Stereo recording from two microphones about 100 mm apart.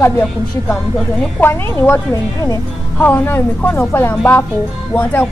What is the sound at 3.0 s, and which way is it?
Speech, 15° left (ahead or behind).